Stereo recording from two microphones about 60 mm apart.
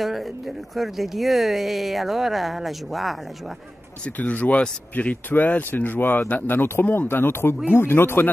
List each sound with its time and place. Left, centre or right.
0.0 s speech: centre
4.0 s speech: left
5.3 s speech: left